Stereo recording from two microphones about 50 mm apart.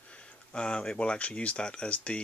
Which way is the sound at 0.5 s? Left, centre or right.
Centre.